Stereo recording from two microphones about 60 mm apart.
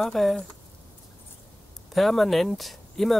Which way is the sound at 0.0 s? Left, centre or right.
Centre.